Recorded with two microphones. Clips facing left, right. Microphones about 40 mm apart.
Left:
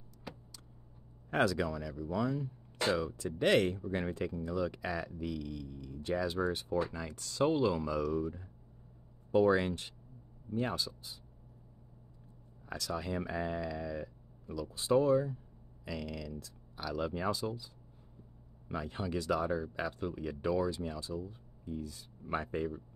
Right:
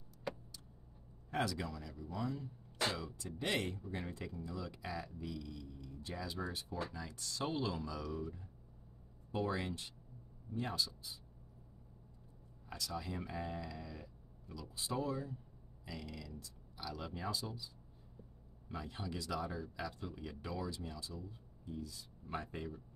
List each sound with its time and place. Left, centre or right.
0.3 s vehicle: centre
1.3 s speech: left
2.0 s speech: left
3.2 s speech: left
7.5 s speech: left
12.6 s speech: left
15.8 s speech: left
16.3 s speech: left
18.7 s speech: left